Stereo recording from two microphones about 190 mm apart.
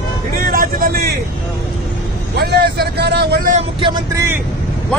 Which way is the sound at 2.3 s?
60° right (ahead or behind).